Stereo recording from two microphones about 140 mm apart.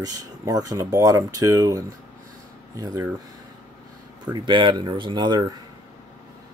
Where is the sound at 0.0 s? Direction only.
25° right (ahead or behind).